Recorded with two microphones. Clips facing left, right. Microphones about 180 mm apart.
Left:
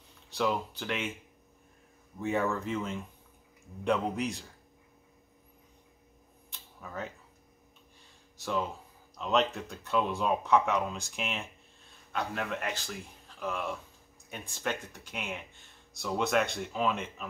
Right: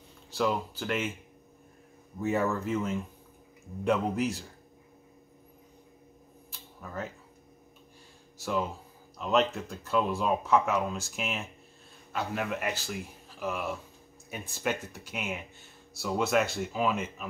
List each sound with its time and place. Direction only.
0.3 s speech: centre (ahead or behind)
2.1 s speech: 5° right (ahead or behind)
6.5 s a sound: centre (ahead or behind)
8.4 s speech: 5° right (ahead or behind)